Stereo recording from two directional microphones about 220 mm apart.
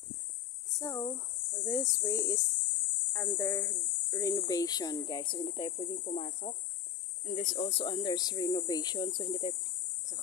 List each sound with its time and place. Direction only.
0.7 s speech: 15° left (ahead or behind)